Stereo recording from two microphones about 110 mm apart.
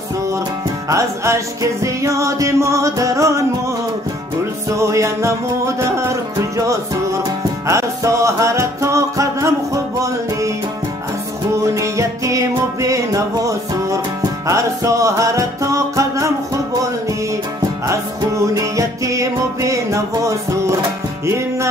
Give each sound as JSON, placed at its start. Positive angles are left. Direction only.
{"t": 0.8, "sound": "music", "side_deg": -25}
{"t": 4.7, "sound": "music", "side_deg": -25}
{"t": 7.6, "sound": "music", "side_deg": -30}
{"t": 11.5, "sound": "music", "side_deg": -25}
{"t": 17.8, "sound": "music", "side_deg": -30}